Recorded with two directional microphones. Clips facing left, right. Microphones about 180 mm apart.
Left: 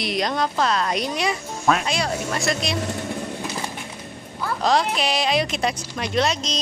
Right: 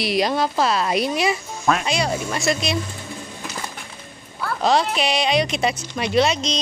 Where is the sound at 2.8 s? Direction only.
70° left (ahead or behind).